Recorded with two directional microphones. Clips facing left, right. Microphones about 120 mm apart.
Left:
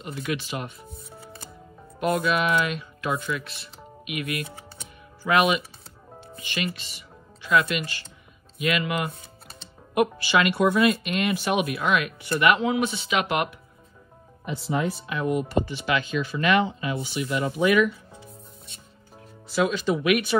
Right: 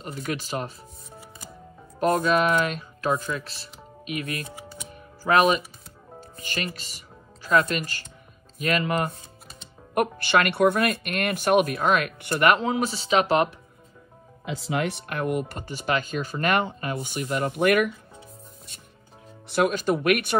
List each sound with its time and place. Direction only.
0.1 s speech: 40° right (ahead or behind)
2.0 s speech: 40° right (ahead or behind)
9.9 s speech: 50° right (ahead or behind); by 13.6 s 35° right (ahead or behind)
14.4 s speech: 90° right; by 17.8 s 55° right (ahead or behind)
19.4 s speech: 60° right (ahead or behind)